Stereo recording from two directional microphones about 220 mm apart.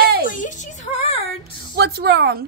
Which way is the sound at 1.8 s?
45° right (ahead or behind).